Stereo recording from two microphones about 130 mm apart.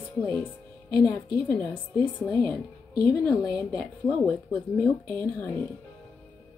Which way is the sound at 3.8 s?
10° left (ahead or behind).